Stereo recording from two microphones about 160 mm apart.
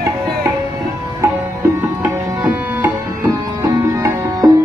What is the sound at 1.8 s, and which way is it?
Music, 15° right (ahead or behind).